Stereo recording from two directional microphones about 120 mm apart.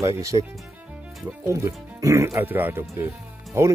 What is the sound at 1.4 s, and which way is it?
Speech, 25° right (ahead or behind).